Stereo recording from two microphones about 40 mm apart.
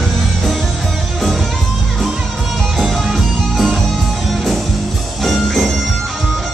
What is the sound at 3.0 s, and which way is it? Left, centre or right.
Music, centre.